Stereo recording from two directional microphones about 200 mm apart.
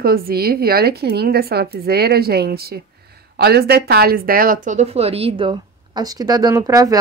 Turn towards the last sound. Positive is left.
turn(degrees=-15)  # may be behind; listen again after turning